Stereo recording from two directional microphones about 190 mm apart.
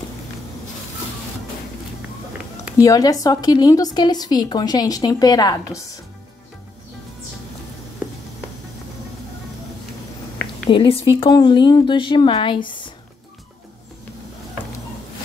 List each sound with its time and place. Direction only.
2.8 s a woman's voice: 20° left (ahead or behind)
10.7 s a woman's voice: 30° left (ahead or behind)